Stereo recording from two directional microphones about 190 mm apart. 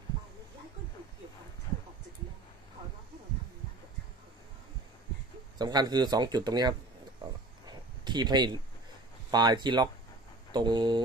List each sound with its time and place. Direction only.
5.6 s speech: 20° right (ahead or behind)
7.6 s a sound: 25° right (ahead or behind)
9.3 s speech: 20° right (ahead or behind)